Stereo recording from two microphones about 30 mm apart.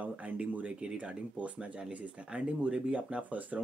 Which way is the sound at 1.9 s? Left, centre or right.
Right.